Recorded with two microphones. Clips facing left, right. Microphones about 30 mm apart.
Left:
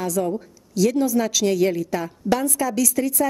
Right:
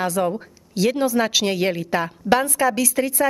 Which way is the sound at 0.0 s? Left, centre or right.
Right.